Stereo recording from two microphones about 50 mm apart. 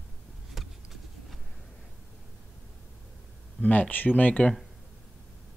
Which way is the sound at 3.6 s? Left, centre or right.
Left.